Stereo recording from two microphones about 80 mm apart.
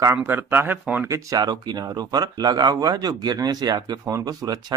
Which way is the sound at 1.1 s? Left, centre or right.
Right.